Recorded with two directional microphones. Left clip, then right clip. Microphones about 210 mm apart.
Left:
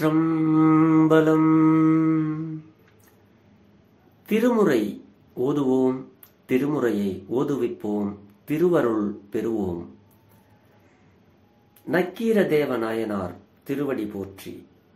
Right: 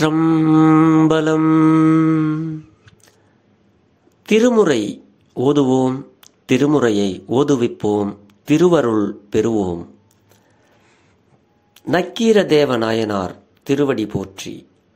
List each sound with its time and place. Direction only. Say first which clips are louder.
0.0 s mantra: right 6 dB; 40° right (ahead or behind)
4.3 s speech: right 7 dB; 45° right (ahead or behind)
11.8 s speech: right 7 dB; 50° right (ahead or behind)